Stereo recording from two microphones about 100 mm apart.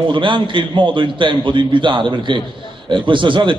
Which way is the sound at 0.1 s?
55° right (ahead or behind).